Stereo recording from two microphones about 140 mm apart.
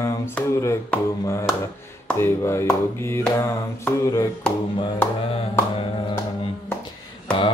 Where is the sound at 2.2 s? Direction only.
20° left (ahead or behind).